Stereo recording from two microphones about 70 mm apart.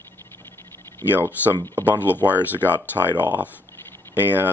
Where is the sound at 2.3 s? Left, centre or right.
Right.